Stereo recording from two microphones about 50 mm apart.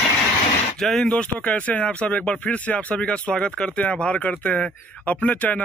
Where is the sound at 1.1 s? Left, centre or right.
Left.